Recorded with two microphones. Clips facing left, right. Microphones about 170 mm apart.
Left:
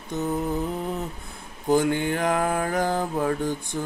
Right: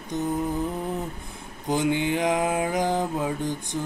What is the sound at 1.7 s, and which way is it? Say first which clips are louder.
Mantra: left 2 dB; 15° right (ahead or behind).